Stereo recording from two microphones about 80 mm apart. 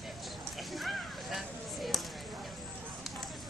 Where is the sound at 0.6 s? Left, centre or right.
Centre.